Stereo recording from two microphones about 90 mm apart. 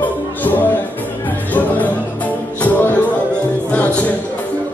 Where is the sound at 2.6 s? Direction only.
20° left (ahead or behind).